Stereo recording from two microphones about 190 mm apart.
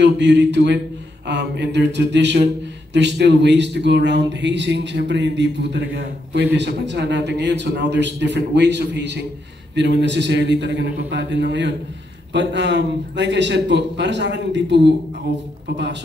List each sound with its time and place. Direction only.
0.0 s a man's voice: 65° right (ahead or behind)